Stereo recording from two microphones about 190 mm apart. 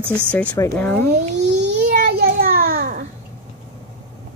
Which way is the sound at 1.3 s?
65° right (ahead or behind).